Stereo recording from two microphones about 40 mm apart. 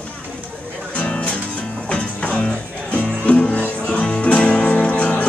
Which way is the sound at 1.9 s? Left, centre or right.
Left.